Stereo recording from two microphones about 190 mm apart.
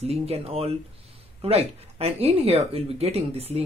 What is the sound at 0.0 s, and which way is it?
Speech, 30° right (ahead or behind).